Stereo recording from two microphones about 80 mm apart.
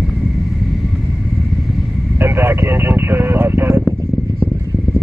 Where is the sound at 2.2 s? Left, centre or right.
Right.